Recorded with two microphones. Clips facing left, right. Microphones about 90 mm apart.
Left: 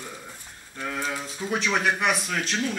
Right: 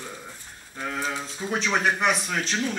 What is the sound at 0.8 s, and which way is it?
Speech, 20° right (ahead or behind).